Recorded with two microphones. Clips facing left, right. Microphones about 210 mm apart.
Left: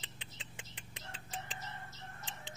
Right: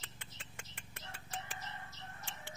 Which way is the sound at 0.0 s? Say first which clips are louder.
Left 2 dB; 15° left (ahead or behind).